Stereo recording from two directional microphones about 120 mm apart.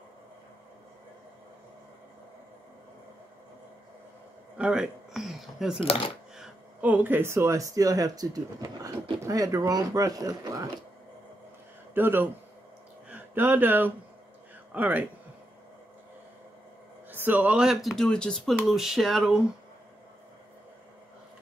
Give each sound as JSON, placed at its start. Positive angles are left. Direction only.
{"t": 4.6, "sound": "speech", "side_deg": -5}
{"t": 5.9, "sound": "speech", "side_deg": 50}
{"t": 6.3, "sound": "a sound", "side_deg": -5}
{"t": 6.9, "sound": "speech", "side_deg": -15}
{"t": 11.9, "sound": "speech", "side_deg": -15}
{"t": 17.1, "sound": "speech", "side_deg": -15}